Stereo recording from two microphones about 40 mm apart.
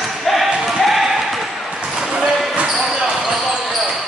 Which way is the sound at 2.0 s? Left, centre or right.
Centre.